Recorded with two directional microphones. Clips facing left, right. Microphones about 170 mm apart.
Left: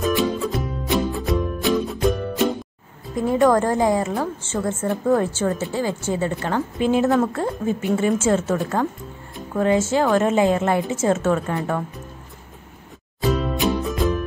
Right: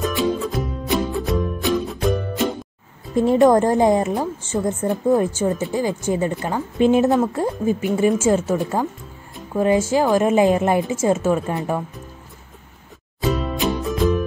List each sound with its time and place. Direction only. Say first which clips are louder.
0.1 s music: even; centre (ahead or behind)
3.2 s a woman's voice: right 3 dB; 25° right (ahead or behind)
7.2 s a woman's voice: right 1 dB; 10° right (ahead or behind)
13.2 s music: even; centre (ahead or behind)